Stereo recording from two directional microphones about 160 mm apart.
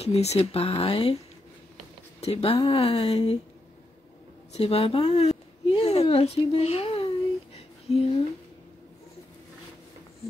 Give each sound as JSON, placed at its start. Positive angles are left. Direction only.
{"t": 0.0, "sound": "speech", "side_deg": 40}
{"t": 2.1, "sound": "speech", "side_deg": 40}
{"t": 4.5, "sound": "a woman's voice", "side_deg": 40}
{"t": 7.5, "sound": "a sound", "side_deg": 40}